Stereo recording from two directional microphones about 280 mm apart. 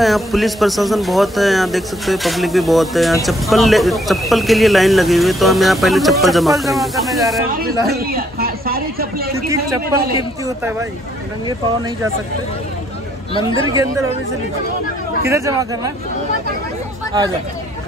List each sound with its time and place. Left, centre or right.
0.0 s speech: centre
8.0 s a sound: right
9.3 s a sound: centre
10.4 s speech: centre
13.3 s speech: centre
13.7 s speech: centre
15.2 s speech: centre